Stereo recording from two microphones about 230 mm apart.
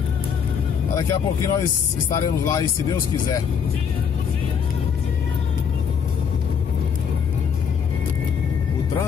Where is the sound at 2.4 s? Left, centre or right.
Centre.